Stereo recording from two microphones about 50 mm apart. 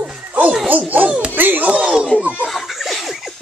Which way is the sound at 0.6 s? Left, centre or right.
Right.